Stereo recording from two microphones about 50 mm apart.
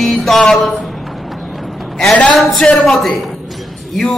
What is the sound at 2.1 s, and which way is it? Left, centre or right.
Speech, left.